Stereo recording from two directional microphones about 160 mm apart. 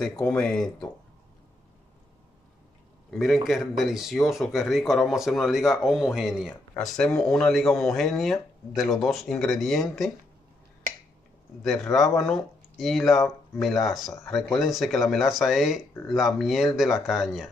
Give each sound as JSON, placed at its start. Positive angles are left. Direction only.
{"t": 0.2, "sound": "speech", "side_deg": 5}
{"t": 3.1, "sound": "speech", "side_deg": 0}
{"t": 11.6, "sound": "speech", "side_deg": 0}